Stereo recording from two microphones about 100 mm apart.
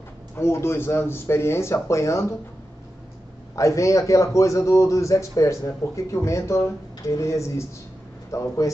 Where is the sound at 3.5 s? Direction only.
30° left (ahead or behind).